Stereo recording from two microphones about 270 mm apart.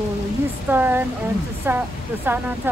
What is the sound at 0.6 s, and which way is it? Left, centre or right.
Speech, centre.